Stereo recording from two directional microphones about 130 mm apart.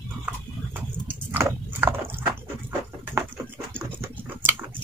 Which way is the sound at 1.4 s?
20° right (ahead or behind).